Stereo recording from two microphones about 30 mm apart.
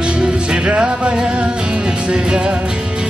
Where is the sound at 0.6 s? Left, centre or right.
Right.